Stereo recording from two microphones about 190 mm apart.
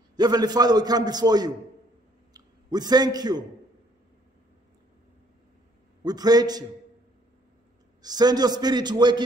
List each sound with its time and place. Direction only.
0.1 s a man's voice: 20° right (ahead or behind)
6.0 s a man's voice: 20° right (ahead or behind)
8.0 s a man's voice: 20° right (ahead or behind)